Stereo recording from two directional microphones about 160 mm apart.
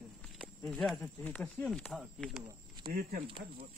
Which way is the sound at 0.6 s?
5° left (ahead or behind).